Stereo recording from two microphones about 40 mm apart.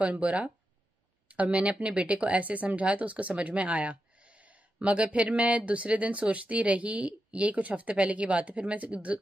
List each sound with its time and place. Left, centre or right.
0.0 s speech: right